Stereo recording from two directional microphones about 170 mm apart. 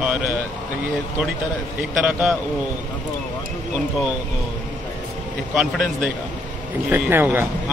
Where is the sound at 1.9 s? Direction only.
5° right (ahead or behind).